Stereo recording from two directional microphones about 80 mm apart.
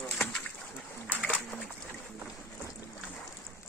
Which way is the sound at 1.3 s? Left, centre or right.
Centre.